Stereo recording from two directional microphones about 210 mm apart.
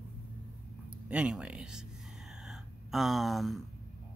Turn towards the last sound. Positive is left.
turn(degrees=0)  # may be behind; listen again after turning